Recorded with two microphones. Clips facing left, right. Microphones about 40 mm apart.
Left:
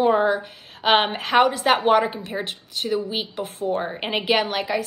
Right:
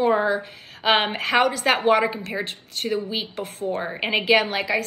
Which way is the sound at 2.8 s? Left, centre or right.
Right.